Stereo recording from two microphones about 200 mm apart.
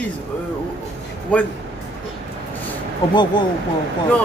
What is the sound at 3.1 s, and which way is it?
Speech, 20° left (ahead or behind).